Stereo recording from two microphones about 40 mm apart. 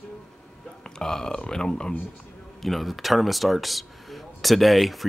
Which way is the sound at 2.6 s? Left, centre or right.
Centre.